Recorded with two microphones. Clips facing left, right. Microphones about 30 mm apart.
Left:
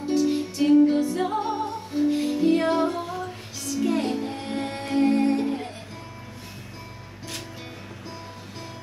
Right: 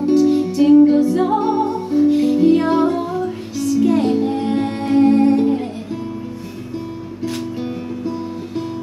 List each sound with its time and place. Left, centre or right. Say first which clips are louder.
0.2 s music: right 9 dB; centre
1.4 s music: right 10 dB; right
2.0 s music: right 8 dB; centre
2.9 s music: right 9 dB; right
3.2 s music: right 12 dB; centre
4.0 s music: right 11 dB; right